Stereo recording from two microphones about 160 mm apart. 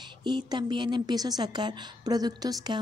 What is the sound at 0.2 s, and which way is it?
Speech, 30° right (ahead or behind).